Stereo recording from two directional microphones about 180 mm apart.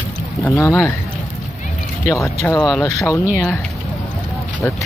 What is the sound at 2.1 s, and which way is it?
Speech, 15° left (ahead or behind).